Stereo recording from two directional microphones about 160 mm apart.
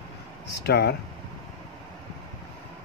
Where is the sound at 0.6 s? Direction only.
90° left.